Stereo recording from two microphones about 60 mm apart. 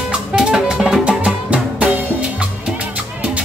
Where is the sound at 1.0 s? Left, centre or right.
Centre.